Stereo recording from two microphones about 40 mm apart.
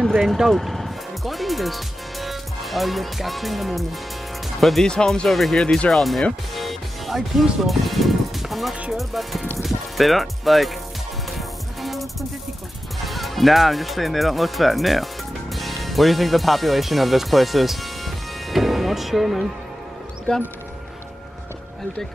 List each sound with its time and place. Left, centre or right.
0.0 s speech: centre
0.5 s music: centre
4.6 s speech: centre
4.8 s speech: centre
5.3 s music: centre
5.9 s speech: centre
6.5 s music: centre
13.0 s speech: centre